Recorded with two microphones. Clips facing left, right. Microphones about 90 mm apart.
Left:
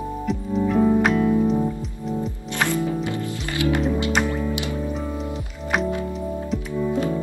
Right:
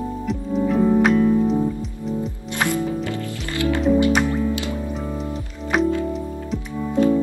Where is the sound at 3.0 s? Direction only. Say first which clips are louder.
Even; 20° left (ahead or behind).